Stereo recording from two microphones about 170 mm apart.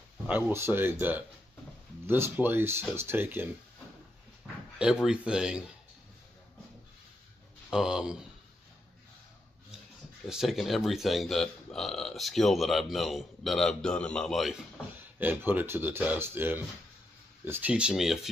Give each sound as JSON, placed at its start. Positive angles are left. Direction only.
{"t": 0.3, "sound": "speech", "side_deg": -10}
{"t": 5.0, "sound": "speech", "side_deg": -5}
{"t": 7.7, "sound": "speech", "side_deg": -5}
{"t": 10.2, "sound": "speech", "side_deg": 0}
{"t": 15.1, "sound": "speech", "side_deg": -10}